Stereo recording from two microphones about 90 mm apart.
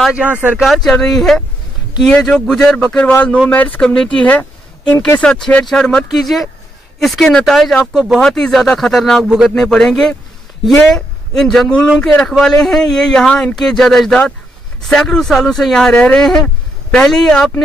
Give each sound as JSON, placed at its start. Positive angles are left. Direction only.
{"t": 0.1, "sound": "speech", "side_deg": -15}
{"t": 0.6, "sound": "speech", "side_deg": 0}
{"t": 5.2, "sound": "speech", "side_deg": 10}